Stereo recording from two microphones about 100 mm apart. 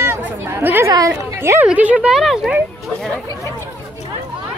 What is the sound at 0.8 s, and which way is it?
Speech, 30° right (ahead or behind).